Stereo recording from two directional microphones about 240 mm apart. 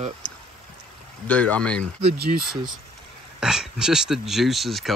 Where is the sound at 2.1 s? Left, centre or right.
Right.